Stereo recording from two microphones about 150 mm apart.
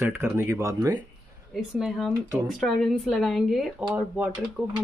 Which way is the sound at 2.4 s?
Centre (ahead or behind).